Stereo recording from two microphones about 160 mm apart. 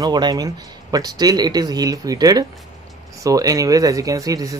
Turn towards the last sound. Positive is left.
turn(degrees=-20)  # may be behind; listen again after turning